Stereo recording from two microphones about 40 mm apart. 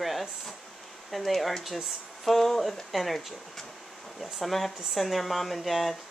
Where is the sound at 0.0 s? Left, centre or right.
Centre.